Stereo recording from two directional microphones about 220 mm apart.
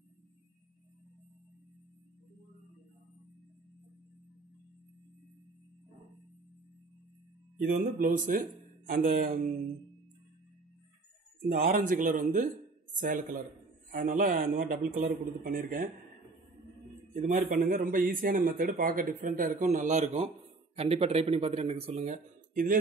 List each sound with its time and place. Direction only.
7.6 s a man's voice: 40° right (ahead or behind)
11.5 s a man's voice: 40° right (ahead or behind)
17.1 s a man's voice: 35° right (ahead or behind)